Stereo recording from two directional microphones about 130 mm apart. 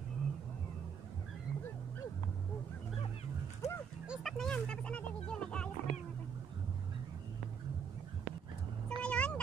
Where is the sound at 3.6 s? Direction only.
55° left (ahead or behind).